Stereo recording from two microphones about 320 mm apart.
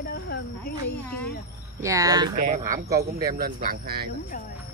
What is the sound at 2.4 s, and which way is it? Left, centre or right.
Speech, right.